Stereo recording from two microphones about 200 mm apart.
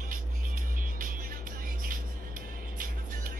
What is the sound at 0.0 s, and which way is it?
Music, 45° right (ahead or behind).